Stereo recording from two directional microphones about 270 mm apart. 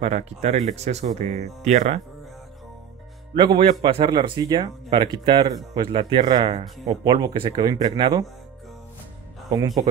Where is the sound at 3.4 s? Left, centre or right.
Centre.